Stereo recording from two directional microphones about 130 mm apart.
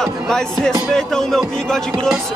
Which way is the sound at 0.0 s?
5° left (ahead or behind).